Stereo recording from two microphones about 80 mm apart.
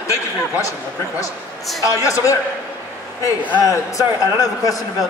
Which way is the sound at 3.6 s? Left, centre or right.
Left.